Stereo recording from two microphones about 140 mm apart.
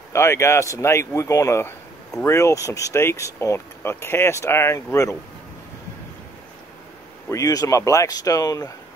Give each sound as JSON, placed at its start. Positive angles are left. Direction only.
{"t": 0.1, "sound": "speech", "side_deg": 20}
{"t": 7.2, "sound": "speech", "side_deg": 25}